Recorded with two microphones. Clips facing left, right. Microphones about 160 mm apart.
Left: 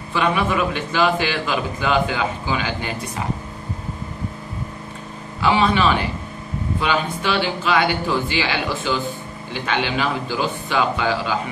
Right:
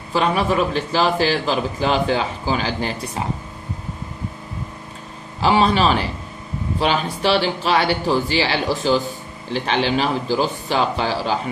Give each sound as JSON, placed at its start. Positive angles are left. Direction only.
{"t": 0.1, "sound": "a man's voice", "side_deg": -35}
{"t": 5.4, "sound": "a man's voice", "side_deg": -35}